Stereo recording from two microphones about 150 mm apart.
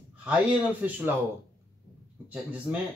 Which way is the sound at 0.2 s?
10° right (ahead or behind).